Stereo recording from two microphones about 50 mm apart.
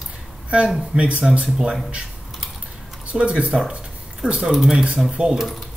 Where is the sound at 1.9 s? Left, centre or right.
Centre.